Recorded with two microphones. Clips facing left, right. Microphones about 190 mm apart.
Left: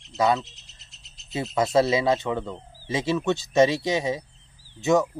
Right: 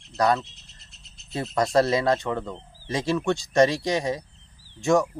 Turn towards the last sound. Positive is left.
turn(degrees=5)  # may be behind; listen again after turning